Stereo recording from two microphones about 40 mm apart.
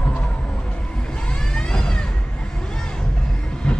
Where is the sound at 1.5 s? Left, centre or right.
Centre.